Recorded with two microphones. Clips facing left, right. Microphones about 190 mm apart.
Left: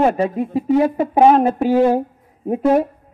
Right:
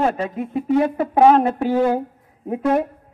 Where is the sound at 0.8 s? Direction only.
25° left (ahead or behind).